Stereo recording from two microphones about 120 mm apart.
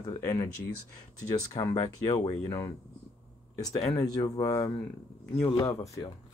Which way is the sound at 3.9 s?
35° left (ahead or behind).